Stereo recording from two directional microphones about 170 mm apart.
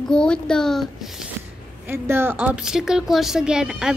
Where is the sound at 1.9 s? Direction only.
15° right (ahead or behind).